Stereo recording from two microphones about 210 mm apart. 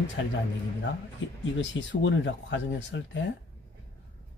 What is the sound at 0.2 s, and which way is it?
Speech, 65° left (ahead or behind).